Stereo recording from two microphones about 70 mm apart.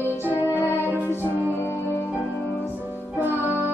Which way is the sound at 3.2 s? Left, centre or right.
Right.